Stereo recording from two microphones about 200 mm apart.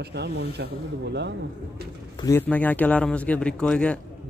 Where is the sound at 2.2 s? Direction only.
10° left (ahead or behind).